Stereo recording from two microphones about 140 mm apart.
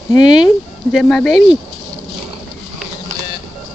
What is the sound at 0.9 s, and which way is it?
Speech, 5° left (ahead or behind).